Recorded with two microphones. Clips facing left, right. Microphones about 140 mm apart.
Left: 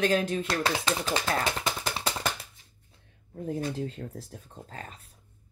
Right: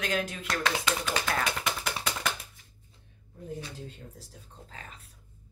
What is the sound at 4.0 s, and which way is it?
Speech, 70° left (ahead or behind).